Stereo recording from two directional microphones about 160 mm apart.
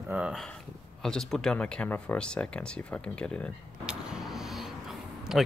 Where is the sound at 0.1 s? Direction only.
5° right (ahead or behind).